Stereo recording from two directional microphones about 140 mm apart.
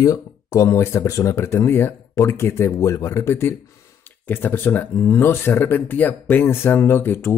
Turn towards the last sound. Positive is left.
turn(degrees=15)  # may be behind; listen again after turning